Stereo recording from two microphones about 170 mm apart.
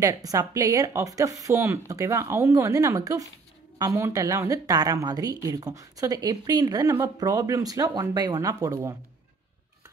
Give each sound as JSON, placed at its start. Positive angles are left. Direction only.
{"t": 0.0, "sound": "a woman's voice", "side_deg": -20}